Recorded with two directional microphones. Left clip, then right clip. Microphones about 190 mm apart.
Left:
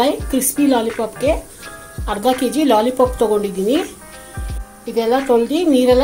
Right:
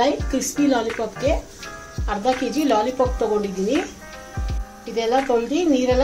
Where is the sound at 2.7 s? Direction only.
40° left (ahead or behind).